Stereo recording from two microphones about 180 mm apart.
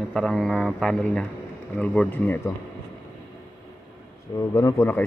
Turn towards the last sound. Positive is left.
turn(degrees=15)  # may be behind; listen again after turning